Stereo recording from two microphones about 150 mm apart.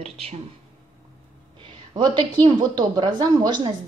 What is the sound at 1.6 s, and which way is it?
Speech, 30° right (ahead or behind).